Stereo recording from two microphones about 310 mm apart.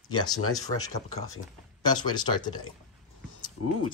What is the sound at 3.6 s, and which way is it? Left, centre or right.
Speech, left.